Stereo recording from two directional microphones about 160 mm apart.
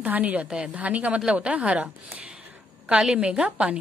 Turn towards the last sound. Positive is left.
turn(degrees=-5)  # may be behind; listen again after turning